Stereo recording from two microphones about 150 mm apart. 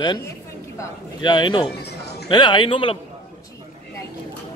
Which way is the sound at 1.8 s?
90° left.